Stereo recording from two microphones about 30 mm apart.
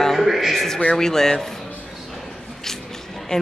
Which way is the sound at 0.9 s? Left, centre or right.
Centre.